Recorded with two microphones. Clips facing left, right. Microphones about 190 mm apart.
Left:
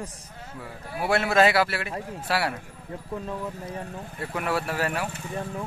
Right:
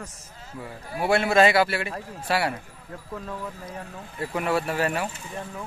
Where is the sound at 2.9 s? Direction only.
25° left (ahead or behind).